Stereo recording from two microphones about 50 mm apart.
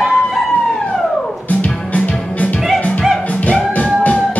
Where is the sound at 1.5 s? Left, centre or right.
Left.